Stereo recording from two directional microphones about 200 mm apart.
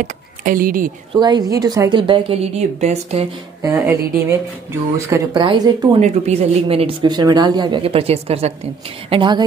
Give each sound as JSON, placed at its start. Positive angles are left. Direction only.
{"t": 0.0, "sound": "speech", "side_deg": -45}
{"t": 1.1, "sound": "speech", "side_deg": -20}
{"t": 3.6, "sound": "a woman's voice", "side_deg": -15}
{"t": 4.9, "sound": "speech", "side_deg": -15}
{"t": 5.9, "sound": "speech", "side_deg": -35}